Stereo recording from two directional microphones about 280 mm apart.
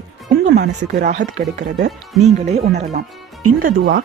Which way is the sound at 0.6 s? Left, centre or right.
Right.